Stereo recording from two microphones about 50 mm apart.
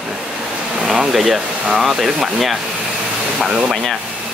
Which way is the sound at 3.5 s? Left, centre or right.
Centre.